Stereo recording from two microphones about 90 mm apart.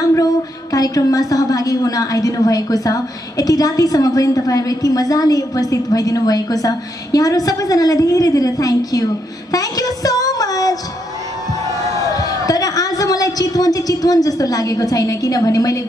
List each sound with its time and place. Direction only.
0.1 s a sound: 40° left (ahead or behind)
1.3 s a woman's voice: 40° left (ahead or behind)
9.5 s music: 45° left (ahead or behind)
12.2 s a woman's voice: 40° left (ahead or behind)